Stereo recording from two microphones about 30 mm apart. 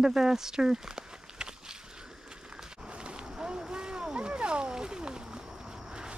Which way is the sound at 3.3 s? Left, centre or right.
Right.